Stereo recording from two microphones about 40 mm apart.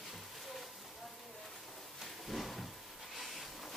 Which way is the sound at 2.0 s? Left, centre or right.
Centre.